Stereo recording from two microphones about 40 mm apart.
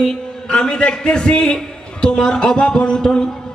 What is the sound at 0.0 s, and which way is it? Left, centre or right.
A man's voice, left.